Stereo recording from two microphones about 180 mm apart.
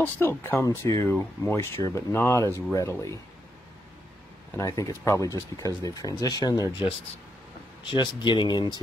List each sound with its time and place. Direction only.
0.0 s speech: 10° left (ahead or behind)
4.6 s speech: 20° left (ahead or behind)
7.9 s speech: 25° left (ahead or behind)